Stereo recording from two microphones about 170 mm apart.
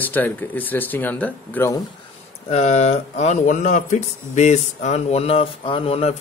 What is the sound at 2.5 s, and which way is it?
Speech, 40° left (ahead or behind).